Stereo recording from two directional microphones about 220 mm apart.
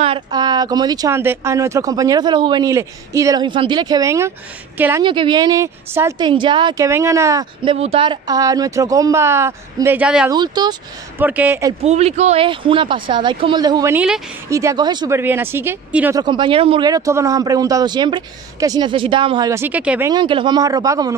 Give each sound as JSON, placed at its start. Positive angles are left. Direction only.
{"t": 0.0, "sound": "speech", "side_deg": -20}
{"t": 5.0, "sound": "speech", "side_deg": -20}
{"t": 7.7, "sound": "speech", "side_deg": -25}
{"t": 10.3, "sound": "speech", "side_deg": -20}
{"t": 11.2, "sound": "speech", "side_deg": -10}
{"t": 11.8, "sound": "speech", "side_deg": -30}
{"t": 13.9, "sound": "speech", "side_deg": -5}
{"t": 14.5, "sound": "speech", "side_deg": -15}
{"t": 16.2, "sound": "speech", "side_deg": -20}
{"t": 20.1, "sound": "speech", "side_deg": -20}